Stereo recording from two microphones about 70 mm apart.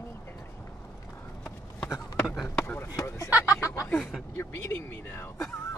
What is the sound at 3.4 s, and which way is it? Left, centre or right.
Speech, left.